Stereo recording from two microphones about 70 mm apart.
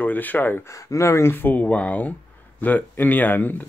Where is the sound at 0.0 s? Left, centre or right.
Left.